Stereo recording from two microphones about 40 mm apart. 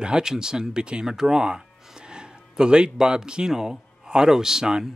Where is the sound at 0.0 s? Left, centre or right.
Centre.